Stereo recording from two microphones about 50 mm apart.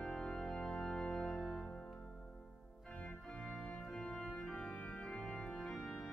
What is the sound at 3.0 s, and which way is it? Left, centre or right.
Organ, centre.